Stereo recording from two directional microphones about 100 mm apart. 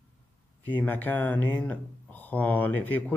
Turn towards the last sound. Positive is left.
turn(degrees=20)  # may be behind; listen again after turning